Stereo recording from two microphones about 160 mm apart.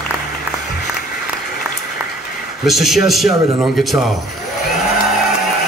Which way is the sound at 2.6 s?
Centre (ahead or behind).